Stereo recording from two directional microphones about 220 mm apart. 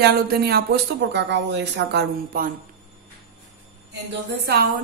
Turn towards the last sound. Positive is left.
turn(degrees=-45)  # may be behind; listen again after turning